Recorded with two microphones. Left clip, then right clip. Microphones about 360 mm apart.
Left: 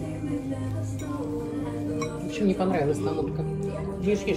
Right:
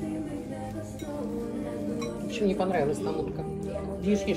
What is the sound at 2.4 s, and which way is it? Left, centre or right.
Speech, centre.